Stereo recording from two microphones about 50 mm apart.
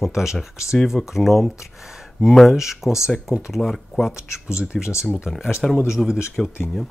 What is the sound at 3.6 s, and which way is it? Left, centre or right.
Speech, centre.